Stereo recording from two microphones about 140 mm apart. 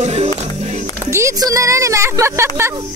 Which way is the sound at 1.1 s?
25° right (ahead or behind).